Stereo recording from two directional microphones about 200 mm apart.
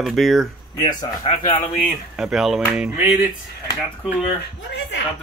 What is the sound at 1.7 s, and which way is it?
Speech, centre (ahead or behind).